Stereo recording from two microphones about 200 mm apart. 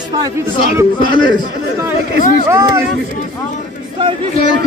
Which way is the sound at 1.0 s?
20° left (ahead or behind).